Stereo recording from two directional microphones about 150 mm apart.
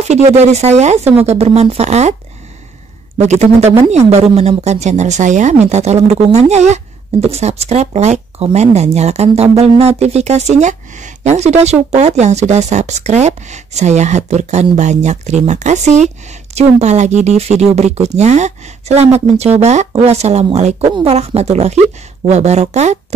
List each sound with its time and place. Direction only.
0.0 s speech: 45° right (ahead or behind)
3.2 s speech: 50° right (ahead or behind)